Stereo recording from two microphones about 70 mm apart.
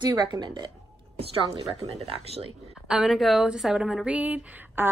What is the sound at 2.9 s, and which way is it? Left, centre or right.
A woman's voice, centre.